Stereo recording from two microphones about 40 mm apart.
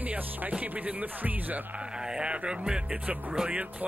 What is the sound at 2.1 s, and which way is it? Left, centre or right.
Music, right.